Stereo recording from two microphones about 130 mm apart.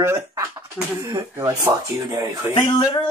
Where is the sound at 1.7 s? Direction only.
35° right (ahead or behind).